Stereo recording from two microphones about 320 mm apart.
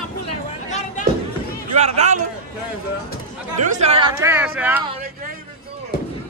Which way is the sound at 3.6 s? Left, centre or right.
Right.